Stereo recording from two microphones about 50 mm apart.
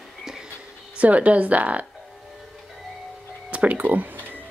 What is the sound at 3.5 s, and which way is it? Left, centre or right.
Speech, right.